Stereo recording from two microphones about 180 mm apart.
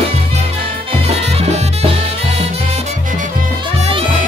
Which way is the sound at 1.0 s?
35° right (ahead or behind).